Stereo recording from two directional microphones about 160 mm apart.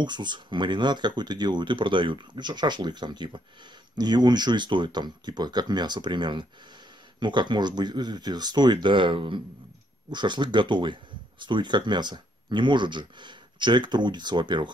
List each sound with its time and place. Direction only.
0.0 s speech: 30° right (ahead or behind)